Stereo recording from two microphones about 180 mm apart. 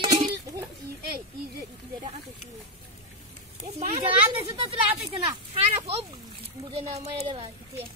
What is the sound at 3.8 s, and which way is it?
Speech, 30° right (ahead or behind).